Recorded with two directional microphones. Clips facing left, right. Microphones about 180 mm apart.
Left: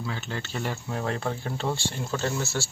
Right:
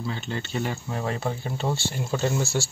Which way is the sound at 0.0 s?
Centre (ahead or behind).